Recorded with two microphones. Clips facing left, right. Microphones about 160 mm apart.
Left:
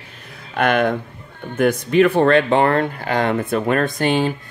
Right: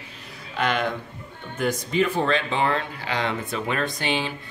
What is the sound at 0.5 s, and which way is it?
Speech, 55° left (ahead or behind).